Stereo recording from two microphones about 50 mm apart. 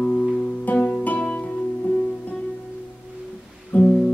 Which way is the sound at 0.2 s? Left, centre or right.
Centre.